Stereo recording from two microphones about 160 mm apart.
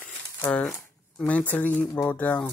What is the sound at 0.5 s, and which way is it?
Speech, 5° left (ahead or behind).